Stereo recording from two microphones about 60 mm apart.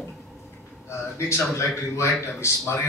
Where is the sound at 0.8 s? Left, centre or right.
Left.